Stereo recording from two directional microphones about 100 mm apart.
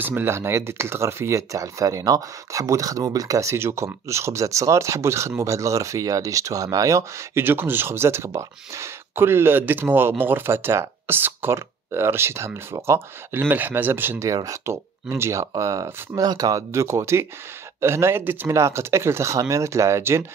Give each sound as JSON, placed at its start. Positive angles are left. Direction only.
{"t": 0.0, "sound": "speech", "side_deg": -20}
{"t": 14.3, "sound": "speech", "side_deg": -35}